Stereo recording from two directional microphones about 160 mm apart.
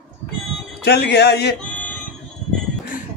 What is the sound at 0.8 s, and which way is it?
Speech, 90° left.